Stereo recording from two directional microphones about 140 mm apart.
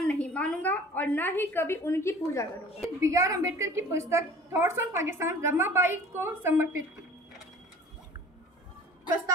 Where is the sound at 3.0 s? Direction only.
20° right (ahead or behind).